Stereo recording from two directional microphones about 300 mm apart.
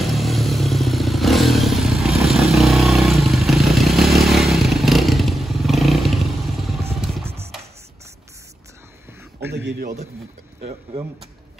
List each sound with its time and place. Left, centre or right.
0.0 s motorcycle: centre
7.0 s music: centre
9.5 s a sound: right